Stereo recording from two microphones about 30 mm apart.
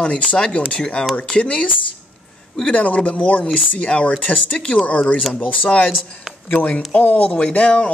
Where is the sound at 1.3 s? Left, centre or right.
Left.